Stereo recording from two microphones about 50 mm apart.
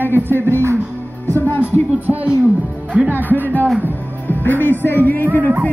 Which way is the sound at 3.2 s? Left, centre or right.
Left.